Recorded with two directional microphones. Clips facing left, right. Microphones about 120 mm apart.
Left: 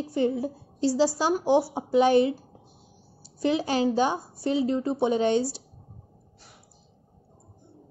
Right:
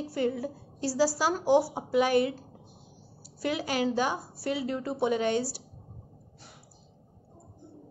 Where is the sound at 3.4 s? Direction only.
25° left (ahead or behind).